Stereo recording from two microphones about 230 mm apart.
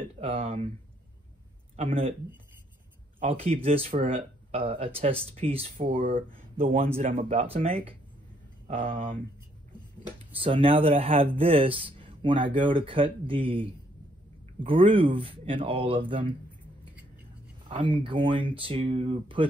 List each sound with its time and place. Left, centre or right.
0.2 s speech: right
1.8 s speech: right
3.2 s speech: right
10.3 s speech: right
17.8 s speech: right